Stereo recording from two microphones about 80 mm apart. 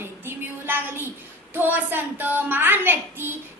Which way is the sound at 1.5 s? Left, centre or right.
Right.